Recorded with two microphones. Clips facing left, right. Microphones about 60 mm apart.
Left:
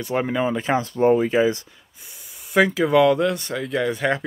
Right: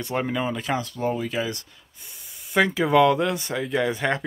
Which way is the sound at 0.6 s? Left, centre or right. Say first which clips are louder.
Left 6 dB; left.